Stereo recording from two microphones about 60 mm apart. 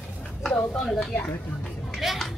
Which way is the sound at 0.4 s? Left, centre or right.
Centre.